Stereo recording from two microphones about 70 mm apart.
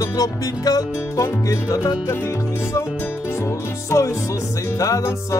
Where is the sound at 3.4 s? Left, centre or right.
Left.